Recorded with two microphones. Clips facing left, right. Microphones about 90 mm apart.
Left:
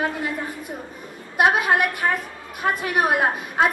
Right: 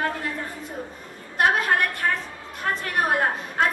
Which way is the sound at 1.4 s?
15° left (ahead or behind).